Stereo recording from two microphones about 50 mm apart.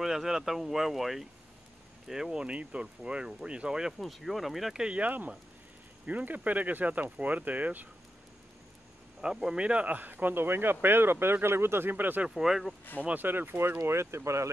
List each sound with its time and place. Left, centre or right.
0.0 s speech: centre
2.4 s speech: right
4.0 s speech: centre
4.7 s speech: centre
5.0 s speech: right
9.2 s speech: centre; by 12.3 s right
12.4 s speech: centre
13.0 s speech: right
13.7 s speech: right